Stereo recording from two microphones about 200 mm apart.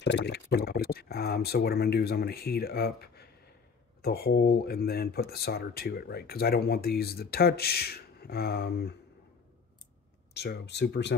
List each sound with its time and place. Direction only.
0.0 s speech: 60° left (ahead or behind)
10.3 s speech: 55° left (ahead or behind)